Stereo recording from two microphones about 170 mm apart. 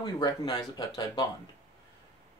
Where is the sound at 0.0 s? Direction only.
25° left (ahead or behind).